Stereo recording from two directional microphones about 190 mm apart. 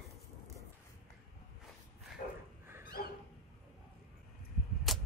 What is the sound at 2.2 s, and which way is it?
Dog, 45° left (ahead or behind).